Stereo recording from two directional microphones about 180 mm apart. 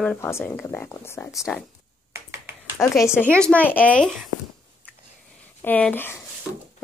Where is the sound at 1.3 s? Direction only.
Centre (ahead or behind).